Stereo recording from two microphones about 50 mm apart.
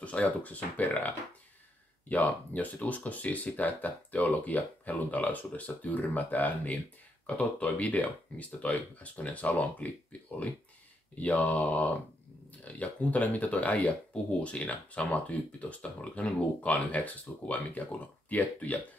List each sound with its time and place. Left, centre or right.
0.0 s speech: left
11.1 s speech: left